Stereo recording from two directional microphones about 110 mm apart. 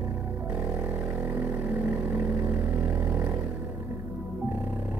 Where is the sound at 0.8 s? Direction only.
15° right (ahead or behind).